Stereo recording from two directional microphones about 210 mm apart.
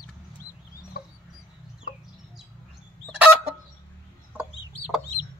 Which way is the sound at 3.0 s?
5° right (ahead or behind).